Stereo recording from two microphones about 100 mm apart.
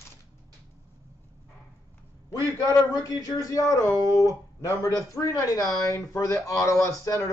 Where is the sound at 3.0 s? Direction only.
40° left (ahead or behind).